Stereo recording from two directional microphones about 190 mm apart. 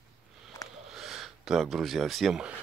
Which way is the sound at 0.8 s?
Centre (ahead or behind).